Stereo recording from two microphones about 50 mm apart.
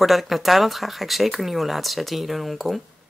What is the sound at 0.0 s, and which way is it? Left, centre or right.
Speech, centre.